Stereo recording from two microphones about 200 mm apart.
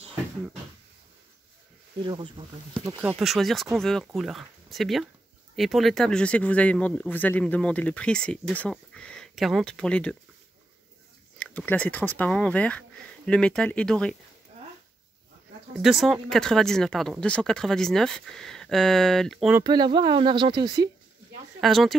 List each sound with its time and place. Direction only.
2.0 s speech: 25° right (ahead or behind)
3.0 s speech: 5° right (ahead or behind)
11.3 s speech: 5° left (ahead or behind)
15.8 s speech: centre (ahead or behind)
19.6 s speech: 20° right (ahead or behind)
21.5 s speech: centre (ahead or behind)